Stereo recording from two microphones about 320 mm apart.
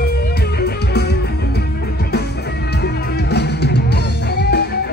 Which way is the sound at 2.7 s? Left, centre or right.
Left.